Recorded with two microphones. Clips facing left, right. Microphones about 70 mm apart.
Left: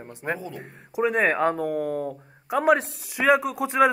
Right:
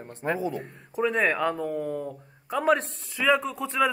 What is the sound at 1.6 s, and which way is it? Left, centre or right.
Speech, left.